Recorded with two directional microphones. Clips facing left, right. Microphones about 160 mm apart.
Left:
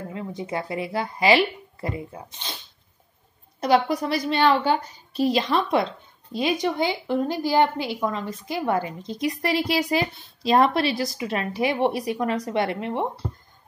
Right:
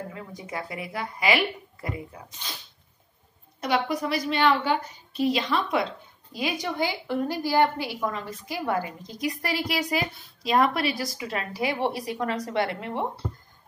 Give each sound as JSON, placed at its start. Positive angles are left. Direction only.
{"t": 0.1, "sound": "a woman's voice", "side_deg": 25}
{"t": 3.6, "sound": "a woman's voice", "side_deg": 35}
{"t": 6.3, "sound": "a woman's voice", "side_deg": 25}